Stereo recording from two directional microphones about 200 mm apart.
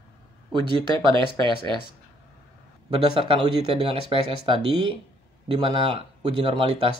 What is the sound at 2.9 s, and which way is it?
Speech, 25° right (ahead or behind).